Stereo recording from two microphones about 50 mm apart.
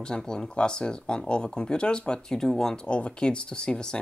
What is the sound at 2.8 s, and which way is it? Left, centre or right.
Speech, left.